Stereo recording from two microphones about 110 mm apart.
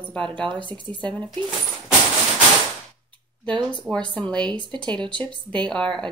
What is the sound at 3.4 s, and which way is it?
Speech, 10° left (ahead or behind).